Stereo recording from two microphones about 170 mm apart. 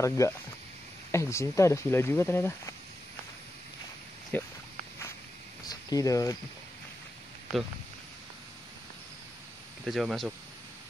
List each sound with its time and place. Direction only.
0.2 s speech: 20° left (ahead or behind)
4.3 s speech: 10° left (ahead or behind)
5.7 s speech: 20° left (ahead or behind)
9.8 s speech: centre (ahead or behind)